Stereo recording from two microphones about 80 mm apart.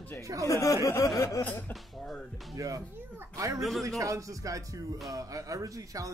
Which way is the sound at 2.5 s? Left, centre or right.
Right.